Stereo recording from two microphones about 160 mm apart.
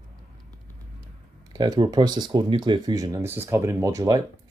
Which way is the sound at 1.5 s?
25° right (ahead or behind).